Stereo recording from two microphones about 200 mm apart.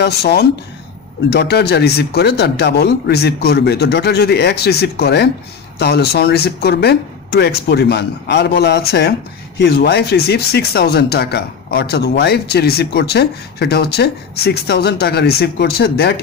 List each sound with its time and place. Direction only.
0.0 s speech: 55° left (ahead or behind)